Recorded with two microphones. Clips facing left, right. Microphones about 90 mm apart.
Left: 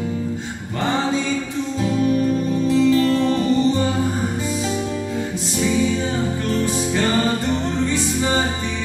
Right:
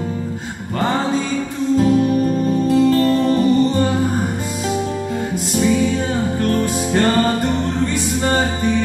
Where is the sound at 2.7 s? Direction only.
50° right (ahead or behind).